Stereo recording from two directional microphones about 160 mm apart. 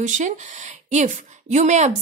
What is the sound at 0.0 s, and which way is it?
A woman's voice, 50° right (ahead or behind).